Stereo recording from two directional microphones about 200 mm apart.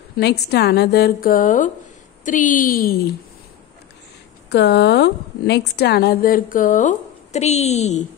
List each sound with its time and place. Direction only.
0.2 s a woman's voice: 55° left (ahead or behind)
4.5 s a woman's voice: 55° left (ahead or behind); by 8.0 s 35° left (ahead or behind)